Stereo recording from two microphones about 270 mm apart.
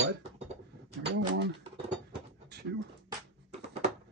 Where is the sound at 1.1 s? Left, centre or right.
Right.